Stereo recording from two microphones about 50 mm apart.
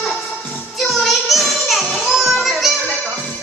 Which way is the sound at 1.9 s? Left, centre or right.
Centre.